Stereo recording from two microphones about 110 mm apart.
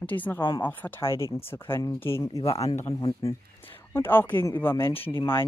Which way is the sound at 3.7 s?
20° left (ahead or behind).